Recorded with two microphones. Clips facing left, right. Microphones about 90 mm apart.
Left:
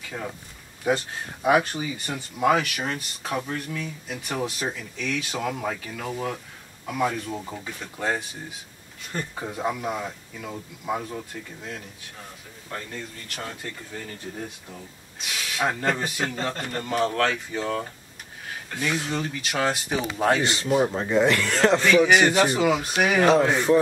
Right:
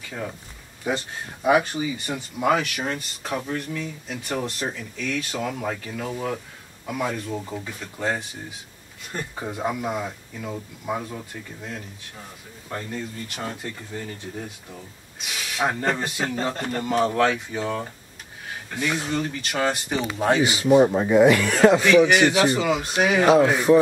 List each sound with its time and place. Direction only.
0.8 s speech: centre (ahead or behind)
12.6 s speech: 15° right (ahead or behind)
15.1 s speech: centre (ahead or behind)